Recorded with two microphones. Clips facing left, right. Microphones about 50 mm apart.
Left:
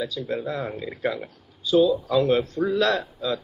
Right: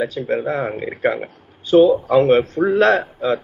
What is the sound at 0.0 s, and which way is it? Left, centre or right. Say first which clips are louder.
Speech: right 7 dB; right.